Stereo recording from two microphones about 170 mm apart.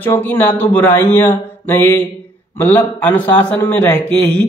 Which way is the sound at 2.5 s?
10° left (ahead or behind).